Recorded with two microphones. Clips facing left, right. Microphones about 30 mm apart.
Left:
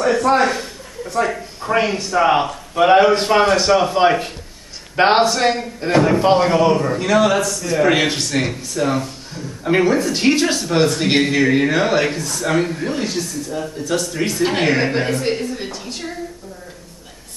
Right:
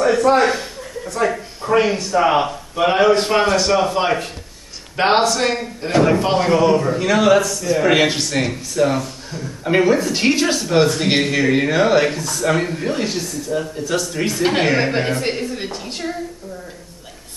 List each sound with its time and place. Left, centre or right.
0.0 s a man's voice: centre
3.4 s a man's voice: left
3.7 s a man's voice: centre
15.7 s a woman's voice: right